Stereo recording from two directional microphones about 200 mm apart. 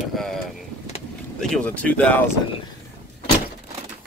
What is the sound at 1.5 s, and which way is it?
Speech, 5° left (ahead or behind).